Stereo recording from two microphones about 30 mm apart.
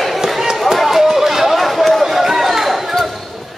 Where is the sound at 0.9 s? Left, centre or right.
Centre.